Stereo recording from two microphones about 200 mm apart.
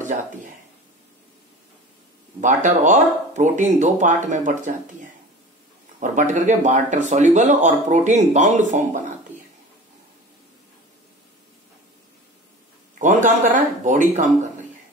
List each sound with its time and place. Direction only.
2.4 s speech: 40° right (ahead or behind)
5.9 s speech: 40° right (ahead or behind)
13.0 s speech: 40° right (ahead or behind)